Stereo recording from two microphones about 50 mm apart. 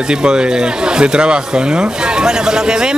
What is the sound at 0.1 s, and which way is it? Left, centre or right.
Speech, centre.